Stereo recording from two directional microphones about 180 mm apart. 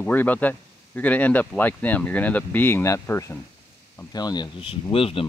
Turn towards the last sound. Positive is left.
turn(degrees=30)  # may be behind; listen again after turning